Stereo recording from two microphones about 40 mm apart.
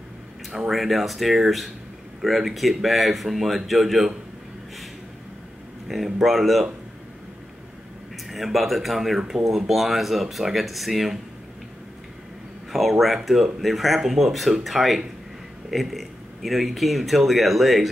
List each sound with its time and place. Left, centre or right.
0.7 s speech: centre
5.9 s speech: centre
8.3 s speech: centre
13.0 s speech: centre